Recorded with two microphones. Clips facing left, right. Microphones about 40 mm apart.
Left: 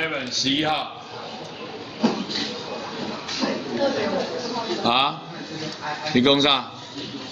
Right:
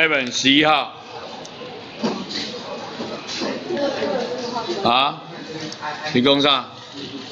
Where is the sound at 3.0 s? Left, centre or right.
Centre.